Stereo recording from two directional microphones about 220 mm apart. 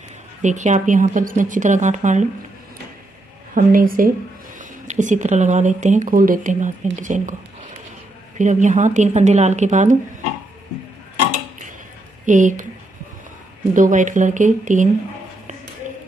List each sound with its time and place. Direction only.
0.4 s speech: 35° right (ahead or behind)
3.5 s speech: 40° right (ahead or behind)
8.4 s speech: 35° right (ahead or behind)
12.3 s speech: 35° right (ahead or behind)
13.7 s speech: 35° right (ahead or behind)
15.8 s tap: 35° right (ahead or behind)